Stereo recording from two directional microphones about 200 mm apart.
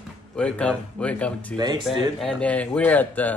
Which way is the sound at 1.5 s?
20° right (ahead or behind).